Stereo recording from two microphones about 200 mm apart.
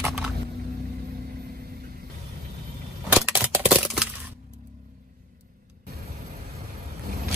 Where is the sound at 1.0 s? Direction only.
50° right (ahead or behind).